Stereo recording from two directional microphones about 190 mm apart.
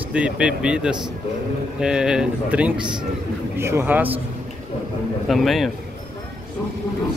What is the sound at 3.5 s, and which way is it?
Speech, 15° right (ahead or behind).